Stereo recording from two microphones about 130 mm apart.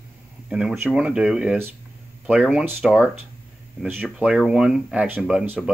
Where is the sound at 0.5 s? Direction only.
5° right (ahead or behind).